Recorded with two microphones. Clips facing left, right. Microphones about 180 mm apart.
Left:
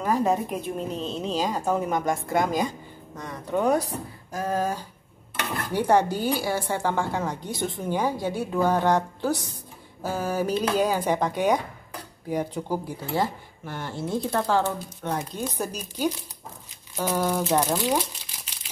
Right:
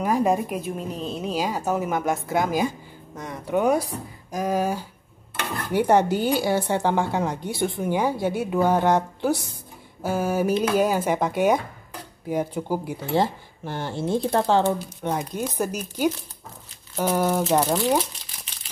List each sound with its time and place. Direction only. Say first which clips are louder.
0.0 s a woman's voice: right 2 dB; 15° right (ahead or behind)
13.1 s a woman's voice: right 4 dB; 30° right (ahead or behind); by 18.0 s 10° right (ahead or behind)